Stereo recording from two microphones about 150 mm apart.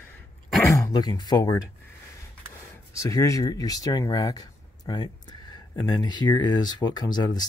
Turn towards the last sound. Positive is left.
turn(degrees=30)  # may be behind; listen again after turning